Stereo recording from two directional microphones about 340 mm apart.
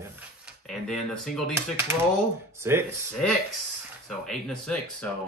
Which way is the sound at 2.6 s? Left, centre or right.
Centre.